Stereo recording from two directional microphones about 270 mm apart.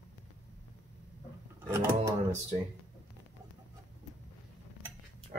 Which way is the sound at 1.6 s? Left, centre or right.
Centre.